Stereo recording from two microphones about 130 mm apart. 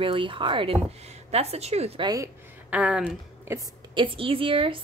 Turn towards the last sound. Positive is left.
turn(degrees=-40)  # may be behind; listen again after turning